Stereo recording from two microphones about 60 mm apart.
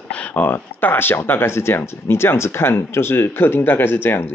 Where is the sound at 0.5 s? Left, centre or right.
Left.